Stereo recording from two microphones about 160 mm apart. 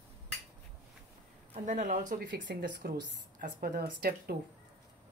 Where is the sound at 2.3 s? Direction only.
90° right; by 4.4 s 70° right (ahead or behind).